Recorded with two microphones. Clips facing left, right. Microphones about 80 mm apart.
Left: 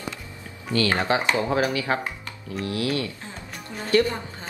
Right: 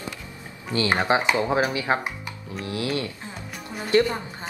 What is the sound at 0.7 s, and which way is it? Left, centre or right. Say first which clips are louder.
A woman's voice: right 1 dB; right.